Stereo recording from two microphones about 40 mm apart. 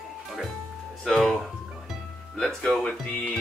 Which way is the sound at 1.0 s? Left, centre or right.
Centre.